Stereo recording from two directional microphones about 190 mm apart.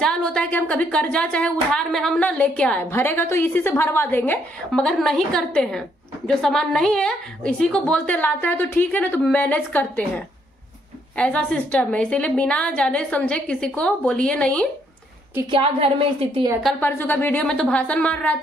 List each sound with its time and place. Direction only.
0.0 s a woman's voice: 5° left (ahead or behind)
15.5 s a woman's voice: 30° right (ahead or behind)
16.6 s a woman's voice: 10° left (ahead or behind)